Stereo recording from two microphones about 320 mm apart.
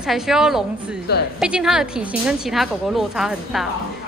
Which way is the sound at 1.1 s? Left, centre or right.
Left.